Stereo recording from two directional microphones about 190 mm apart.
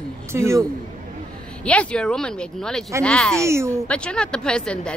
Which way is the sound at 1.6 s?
5° left (ahead or behind).